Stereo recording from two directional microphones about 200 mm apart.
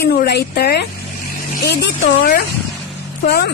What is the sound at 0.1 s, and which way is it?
Speech, 55° left (ahead or behind).